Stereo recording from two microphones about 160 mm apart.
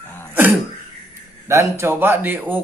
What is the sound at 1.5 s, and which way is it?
Speech, 15° right (ahead or behind).